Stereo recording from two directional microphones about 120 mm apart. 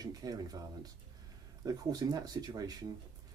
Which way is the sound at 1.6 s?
35° right (ahead or behind).